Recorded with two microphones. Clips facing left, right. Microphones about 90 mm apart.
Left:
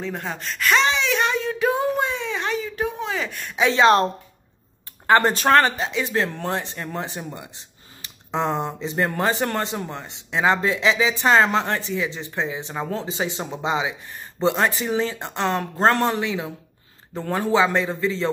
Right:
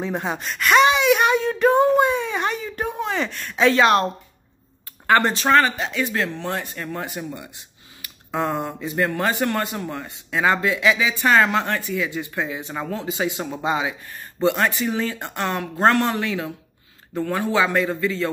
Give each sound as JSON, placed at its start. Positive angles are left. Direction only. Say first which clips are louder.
{"t": 0.0, "sound": "speech", "louder": "right 4 dB", "side_deg": -20}
{"t": 0.4, "sound": "speech", "louder": "right 4 dB", "side_deg": -5}
{"t": 0.8, "sound": "a sound", "louder": "right 5 dB", "side_deg": -10}
{"t": 3.3, "sound": "speech", "louder": "right 2 dB", "side_deg": 15}
{"t": 5.2, "sound": "speech", "louder": "left 1 dB", "side_deg": 45}
{"t": 5.7, "sound": "speech", "louder": "even", "side_deg": 25}
{"t": 17.1, "sound": "speech", "louder": "even", "side_deg": 30}